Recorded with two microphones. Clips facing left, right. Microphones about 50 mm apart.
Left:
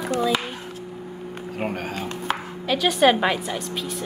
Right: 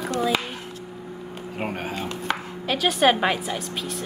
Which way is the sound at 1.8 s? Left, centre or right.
Centre.